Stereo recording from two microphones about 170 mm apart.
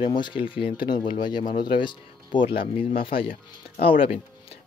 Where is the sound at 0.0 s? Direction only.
30° left (ahead or behind).